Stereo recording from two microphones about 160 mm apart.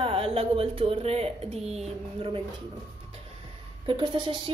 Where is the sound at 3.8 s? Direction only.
30° right (ahead or behind).